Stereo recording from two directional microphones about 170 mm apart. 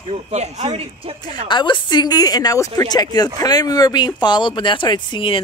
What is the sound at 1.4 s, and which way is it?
A woman's voice, 25° left (ahead or behind).